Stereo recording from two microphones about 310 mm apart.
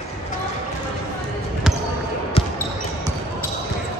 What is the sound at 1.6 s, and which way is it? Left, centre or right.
Basketball bounce, centre.